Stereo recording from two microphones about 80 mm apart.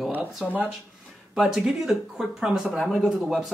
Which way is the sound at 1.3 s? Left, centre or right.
Centre.